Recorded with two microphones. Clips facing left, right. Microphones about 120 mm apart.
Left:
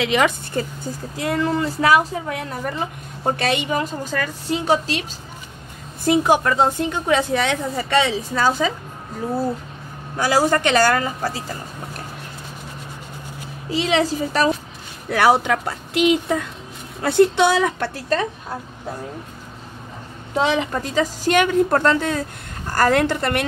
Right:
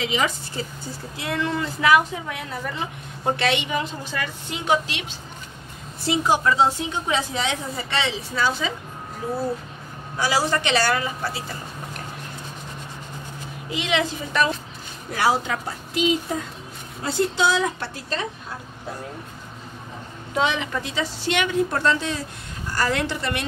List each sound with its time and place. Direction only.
0.0 s speech: 65° left (ahead or behind)
1.1 s a woman's voice: 40° left (ahead or behind)
6.0 s a woman's voice: 55° left (ahead or behind)
7.7 s a woman's voice: 45° left (ahead or behind)
10.1 s a woman's voice: 50° left (ahead or behind)
13.7 s a woman's voice: 35° left (ahead or behind)
15.0 s speech: 65° left (ahead or behind)
20.3 s a woman's voice: 35° left (ahead or behind); by 23.4 s 55° left (ahead or behind)